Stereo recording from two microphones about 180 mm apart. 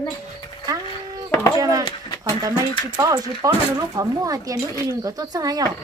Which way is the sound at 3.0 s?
20° right (ahead or behind).